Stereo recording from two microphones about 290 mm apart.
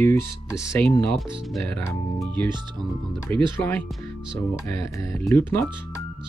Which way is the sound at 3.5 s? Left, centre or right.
Centre.